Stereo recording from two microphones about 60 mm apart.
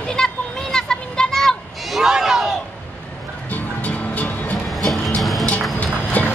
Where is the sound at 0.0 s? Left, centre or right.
Centre.